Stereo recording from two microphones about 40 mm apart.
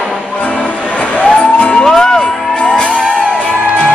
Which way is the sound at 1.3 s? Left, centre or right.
Left.